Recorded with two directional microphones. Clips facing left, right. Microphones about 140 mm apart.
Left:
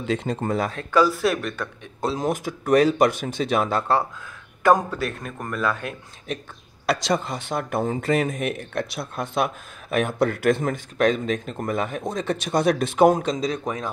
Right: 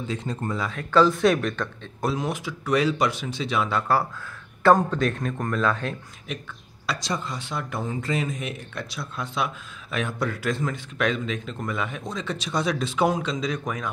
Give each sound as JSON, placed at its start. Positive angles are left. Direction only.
{"t": 0.0, "sound": "speech", "side_deg": 70}
{"t": 0.9, "sound": "speech", "side_deg": 5}
{"t": 2.1, "sound": "speech", "side_deg": 45}
{"t": 3.8, "sound": "speech", "side_deg": 25}
{"t": 4.6, "sound": "speech", "side_deg": 10}
{"t": 6.9, "sound": "speech", "side_deg": 65}
{"t": 11.0, "sound": "speech", "side_deg": 45}